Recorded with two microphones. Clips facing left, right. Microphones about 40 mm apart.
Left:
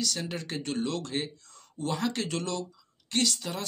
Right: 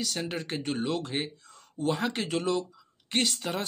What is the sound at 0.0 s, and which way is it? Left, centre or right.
Speech, centre.